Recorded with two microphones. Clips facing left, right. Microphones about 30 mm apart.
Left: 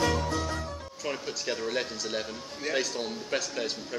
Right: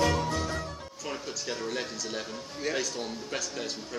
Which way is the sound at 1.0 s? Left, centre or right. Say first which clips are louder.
Left 3 dB; centre.